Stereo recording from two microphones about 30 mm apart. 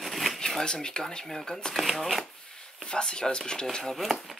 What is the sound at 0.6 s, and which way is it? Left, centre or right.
Speech, left.